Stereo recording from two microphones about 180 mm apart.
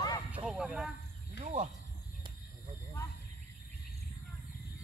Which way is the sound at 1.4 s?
35° right (ahead or behind).